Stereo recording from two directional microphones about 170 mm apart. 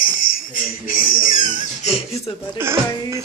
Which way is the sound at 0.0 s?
55° left (ahead or behind).